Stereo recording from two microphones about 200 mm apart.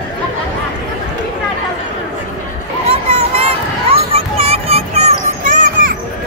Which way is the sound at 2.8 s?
30° right (ahead or behind).